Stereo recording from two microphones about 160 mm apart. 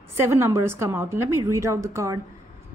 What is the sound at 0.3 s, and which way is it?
A woman's voice, 15° right (ahead or behind).